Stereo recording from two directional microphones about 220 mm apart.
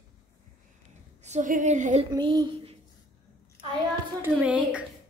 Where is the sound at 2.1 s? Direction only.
20° right (ahead or behind).